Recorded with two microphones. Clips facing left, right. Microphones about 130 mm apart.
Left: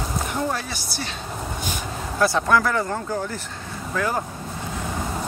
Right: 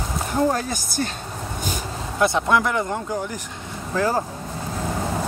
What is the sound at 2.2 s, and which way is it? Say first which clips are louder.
Speech: even; 20° right (ahead or behind).